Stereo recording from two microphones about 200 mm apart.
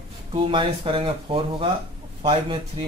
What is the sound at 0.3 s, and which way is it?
Speech, 25° right (ahead or behind).